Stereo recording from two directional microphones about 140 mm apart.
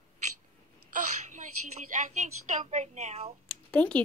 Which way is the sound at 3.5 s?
10° left (ahead or behind).